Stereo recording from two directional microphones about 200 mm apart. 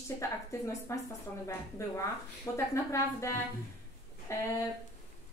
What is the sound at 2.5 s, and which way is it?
A woman's voice, 15° left (ahead or behind).